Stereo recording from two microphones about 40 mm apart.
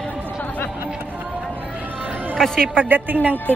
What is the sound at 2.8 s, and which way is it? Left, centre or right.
Speech, right.